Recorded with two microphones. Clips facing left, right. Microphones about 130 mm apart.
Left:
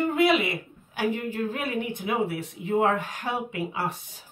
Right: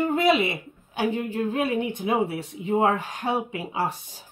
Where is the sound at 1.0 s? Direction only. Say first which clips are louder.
Right 2 dB; 20° right (ahead or behind).